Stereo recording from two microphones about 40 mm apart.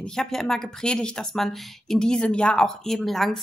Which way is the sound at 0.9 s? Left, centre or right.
Left.